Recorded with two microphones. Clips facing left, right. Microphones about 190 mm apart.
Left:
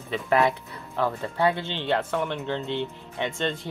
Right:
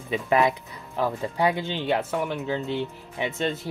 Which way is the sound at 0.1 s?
15° right (ahead or behind).